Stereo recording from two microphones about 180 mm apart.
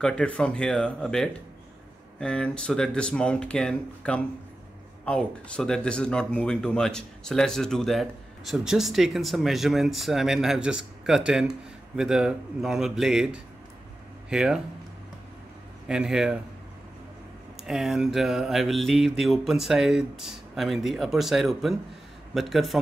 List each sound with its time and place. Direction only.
0.0 s speech: 5° left (ahead or behind)
15.9 s speech: 5° right (ahead or behind)
17.6 s speech: centre (ahead or behind)